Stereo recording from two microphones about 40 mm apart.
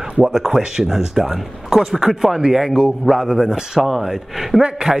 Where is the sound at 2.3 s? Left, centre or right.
Centre.